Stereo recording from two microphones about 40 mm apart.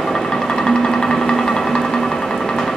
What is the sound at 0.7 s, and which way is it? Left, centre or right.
Sewing machine, centre.